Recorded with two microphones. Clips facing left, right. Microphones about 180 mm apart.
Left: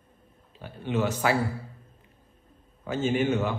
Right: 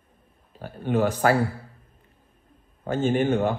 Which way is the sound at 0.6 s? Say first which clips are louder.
Right 4 dB; 45° right (ahead or behind).